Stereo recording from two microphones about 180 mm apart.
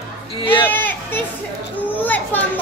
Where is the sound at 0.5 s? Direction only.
10° left (ahead or behind).